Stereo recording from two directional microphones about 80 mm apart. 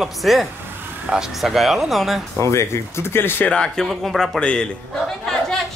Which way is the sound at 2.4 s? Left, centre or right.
Left.